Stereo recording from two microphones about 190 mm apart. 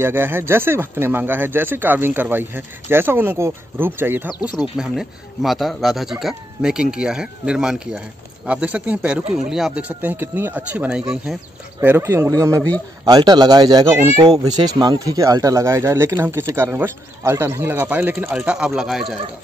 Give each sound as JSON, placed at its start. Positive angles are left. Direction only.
{"t": 0.0, "sound": "speech", "side_deg": -10}